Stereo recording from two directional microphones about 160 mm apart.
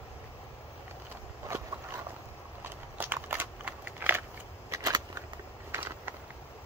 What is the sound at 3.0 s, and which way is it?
Biting, 10° right (ahead or behind).